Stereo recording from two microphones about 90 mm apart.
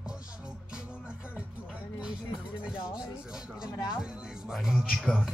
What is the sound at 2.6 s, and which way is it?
Speech, 10° right (ahead or behind).